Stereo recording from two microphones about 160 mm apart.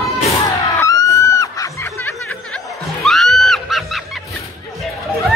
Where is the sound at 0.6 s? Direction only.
20° left (ahead or behind).